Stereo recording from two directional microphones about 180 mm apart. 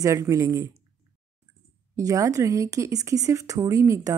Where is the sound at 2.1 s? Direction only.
20° right (ahead or behind).